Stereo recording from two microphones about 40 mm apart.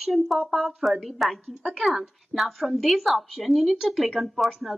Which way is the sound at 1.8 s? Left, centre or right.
Centre.